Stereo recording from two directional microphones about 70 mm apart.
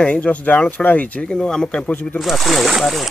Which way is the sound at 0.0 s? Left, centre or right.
Centre.